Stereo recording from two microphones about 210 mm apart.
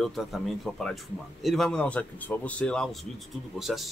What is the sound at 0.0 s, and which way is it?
Speech, centre (ahead or behind).